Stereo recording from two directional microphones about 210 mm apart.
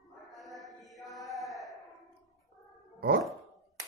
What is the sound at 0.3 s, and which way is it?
Mantra, centre (ahead or behind).